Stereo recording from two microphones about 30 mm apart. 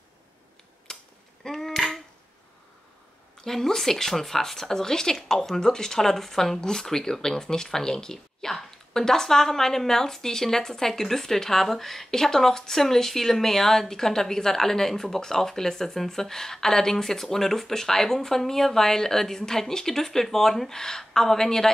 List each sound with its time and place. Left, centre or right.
0.9 s cap gun: centre
3.3 s speech: centre